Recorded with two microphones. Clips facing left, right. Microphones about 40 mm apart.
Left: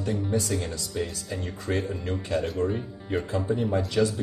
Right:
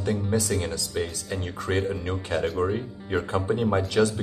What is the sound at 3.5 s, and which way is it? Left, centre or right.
Speech, right.